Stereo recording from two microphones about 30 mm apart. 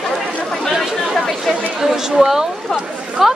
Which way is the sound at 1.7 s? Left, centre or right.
Centre.